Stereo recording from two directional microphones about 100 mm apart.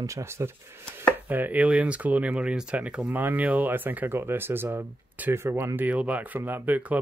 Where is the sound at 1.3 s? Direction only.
15° right (ahead or behind).